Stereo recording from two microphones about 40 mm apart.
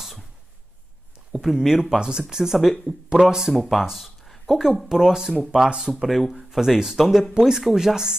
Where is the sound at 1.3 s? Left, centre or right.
Centre.